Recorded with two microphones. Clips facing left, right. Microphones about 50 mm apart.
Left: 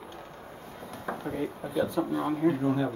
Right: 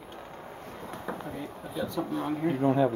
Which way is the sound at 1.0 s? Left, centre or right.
Centre.